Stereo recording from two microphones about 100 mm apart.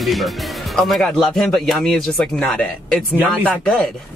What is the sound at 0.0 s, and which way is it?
Speech, centre (ahead or behind).